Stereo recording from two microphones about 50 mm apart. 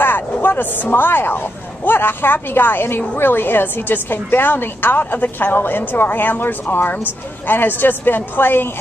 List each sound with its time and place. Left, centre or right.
0.0 s a woman's voice: left